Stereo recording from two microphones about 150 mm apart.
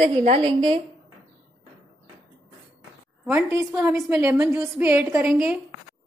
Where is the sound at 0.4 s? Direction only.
35° right (ahead or behind).